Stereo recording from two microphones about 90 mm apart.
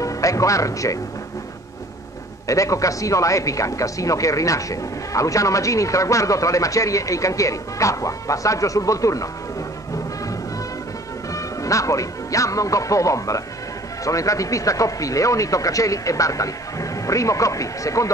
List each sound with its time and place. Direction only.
0.0 s speech: 35° left (ahead or behind)
2.4 s speech: 35° left (ahead or behind)
11.3 s speech: 35° left (ahead or behind)